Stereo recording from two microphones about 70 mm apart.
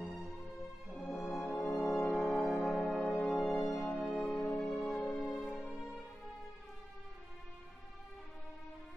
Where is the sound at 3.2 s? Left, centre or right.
Centre.